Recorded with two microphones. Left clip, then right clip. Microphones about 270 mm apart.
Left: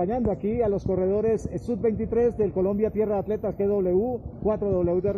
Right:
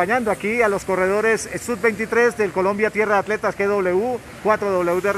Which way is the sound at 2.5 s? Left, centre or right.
Right.